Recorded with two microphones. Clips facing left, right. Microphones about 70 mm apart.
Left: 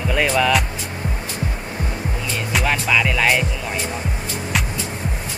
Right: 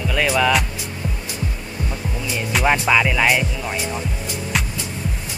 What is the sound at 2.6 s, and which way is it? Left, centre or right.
Music, centre.